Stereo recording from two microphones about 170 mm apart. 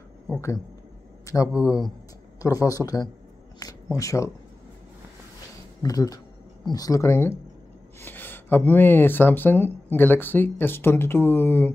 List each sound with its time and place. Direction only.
1.2 s speech: 20° left (ahead or behind)
5.8 s speech: 20° left (ahead or behind)